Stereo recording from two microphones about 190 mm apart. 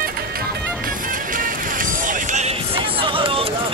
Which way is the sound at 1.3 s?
45° right (ahead or behind).